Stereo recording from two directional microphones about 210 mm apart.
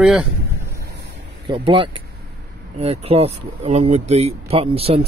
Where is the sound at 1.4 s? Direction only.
25° right (ahead or behind).